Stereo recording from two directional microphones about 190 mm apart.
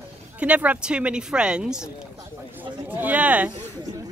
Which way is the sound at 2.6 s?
10° right (ahead or behind).